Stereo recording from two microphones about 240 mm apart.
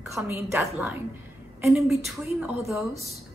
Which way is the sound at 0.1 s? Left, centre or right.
Centre.